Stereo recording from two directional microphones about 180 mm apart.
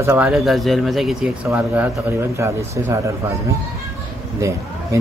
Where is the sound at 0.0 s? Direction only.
10° right (ahead or behind).